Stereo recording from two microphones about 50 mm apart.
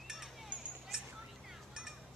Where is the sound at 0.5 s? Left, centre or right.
Centre.